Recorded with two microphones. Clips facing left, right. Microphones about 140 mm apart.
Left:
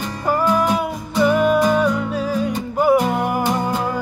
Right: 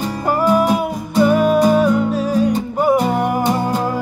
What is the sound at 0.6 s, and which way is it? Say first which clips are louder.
Music: right 3 dB; 5° right (ahead or behind).